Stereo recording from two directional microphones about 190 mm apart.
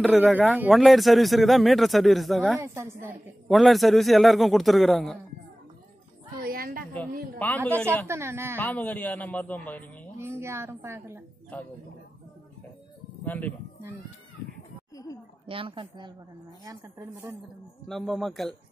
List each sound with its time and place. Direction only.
0.0 s speech: 5° right (ahead or behind)
2.6 s speech: 15° right (ahead or behind)
3.4 s speech: centre (ahead or behind)
6.4 s a sound: 50° right (ahead or behind)
7.3 s a woman's voice: 5° left (ahead or behind)
8.1 s speech: 15° right (ahead or behind)
8.5 s a woman's voice: 10° left (ahead or behind)
10.1 s a woman's voice: 15° right (ahead or behind)
11.5 s a woman's voice: 10° left (ahead or behind)
13.2 s speech: 10° left (ahead or behind)
15.4 s a woman's voice: 30° right (ahead or behind)
17.8 s speech: centre (ahead or behind)